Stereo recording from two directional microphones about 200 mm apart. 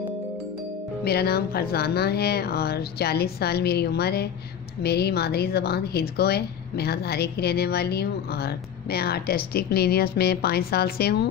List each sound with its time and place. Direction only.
1.0 s speech: 50° left (ahead or behind)